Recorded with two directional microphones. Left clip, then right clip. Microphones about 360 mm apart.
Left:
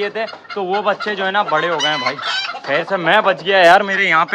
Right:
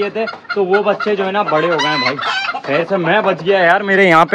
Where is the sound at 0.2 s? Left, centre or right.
Centre.